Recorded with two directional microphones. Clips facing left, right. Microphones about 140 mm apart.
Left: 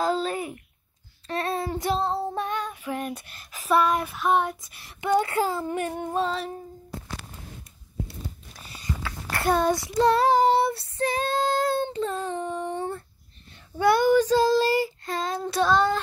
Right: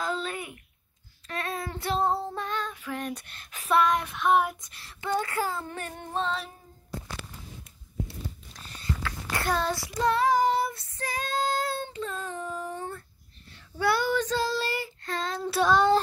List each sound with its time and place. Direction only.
0.0 s a sound: 35° left (ahead or behind)
1.7 s child singing: 15° left (ahead or behind)
2.3 s female singing: 15° left (ahead or behind); by 4.6 s centre (ahead or behind)
4.6 s child singing: 15° left (ahead or behind)
8.5 s a sound: 10° left (ahead or behind)
10.0 s child singing: 35° left (ahead or behind); by 15.4 s 10° left (ahead or behind)
15.4 s child singing: 10° right (ahead or behind)